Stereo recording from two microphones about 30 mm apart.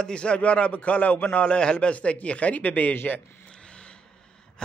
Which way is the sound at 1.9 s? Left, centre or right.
Left.